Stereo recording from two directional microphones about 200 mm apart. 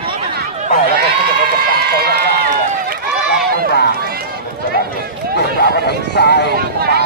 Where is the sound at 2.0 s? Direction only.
50° right (ahead or behind).